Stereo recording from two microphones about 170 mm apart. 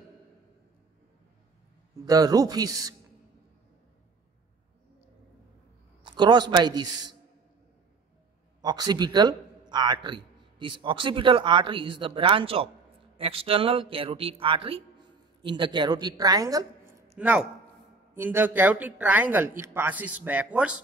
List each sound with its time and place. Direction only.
2.0 s a man's voice: 20° right (ahead or behind)
6.0 s a man's voice: 25° right (ahead or behind)
8.5 s a man's voice: 25° right (ahead or behind); by 20.7 s 5° right (ahead or behind)